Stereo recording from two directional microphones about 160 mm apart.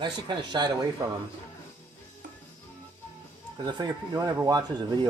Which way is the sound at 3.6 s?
25° right (ahead or behind).